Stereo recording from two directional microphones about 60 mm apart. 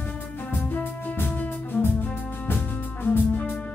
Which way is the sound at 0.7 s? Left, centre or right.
Left.